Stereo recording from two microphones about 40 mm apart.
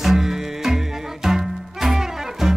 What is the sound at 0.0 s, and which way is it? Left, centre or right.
Music, centre.